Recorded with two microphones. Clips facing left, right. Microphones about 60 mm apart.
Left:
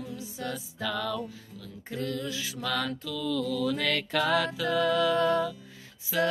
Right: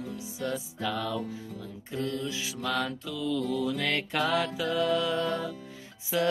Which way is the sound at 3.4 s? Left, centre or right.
Centre.